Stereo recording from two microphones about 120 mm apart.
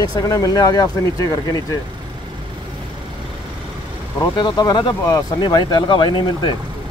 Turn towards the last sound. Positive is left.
turn(degrees=45)  # may be behind; listen again after turning